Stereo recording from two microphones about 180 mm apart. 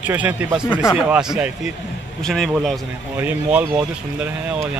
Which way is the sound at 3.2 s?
10° right (ahead or behind).